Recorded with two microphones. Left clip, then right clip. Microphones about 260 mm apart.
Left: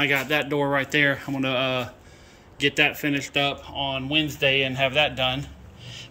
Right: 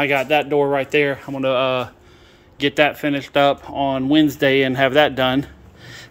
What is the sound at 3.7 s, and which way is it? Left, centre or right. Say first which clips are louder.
Speech: right 8 dB; right.